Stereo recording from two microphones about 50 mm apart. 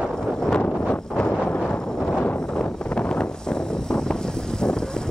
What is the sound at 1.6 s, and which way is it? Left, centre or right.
Wind noise, centre.